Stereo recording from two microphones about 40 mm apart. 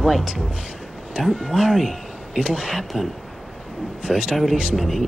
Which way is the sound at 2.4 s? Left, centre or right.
Right.